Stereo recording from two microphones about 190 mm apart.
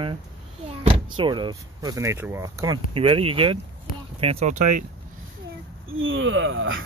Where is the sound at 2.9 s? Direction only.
30° right (ahead or behind).